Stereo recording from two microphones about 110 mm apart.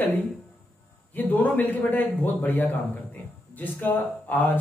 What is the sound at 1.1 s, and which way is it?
Speech, 15° left (ahead or behind).